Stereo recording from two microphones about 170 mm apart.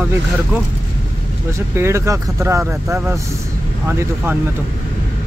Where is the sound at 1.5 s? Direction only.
15° right (ahead or behind).